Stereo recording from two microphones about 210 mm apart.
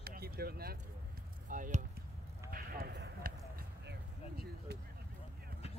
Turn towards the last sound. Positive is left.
turn(degrees=-50)  # may be behind; listen again after turning